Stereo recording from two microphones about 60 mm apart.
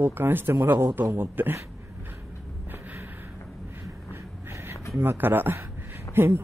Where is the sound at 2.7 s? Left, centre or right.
Right.